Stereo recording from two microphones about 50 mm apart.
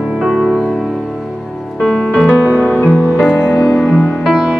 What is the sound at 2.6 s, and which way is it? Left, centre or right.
Music, left.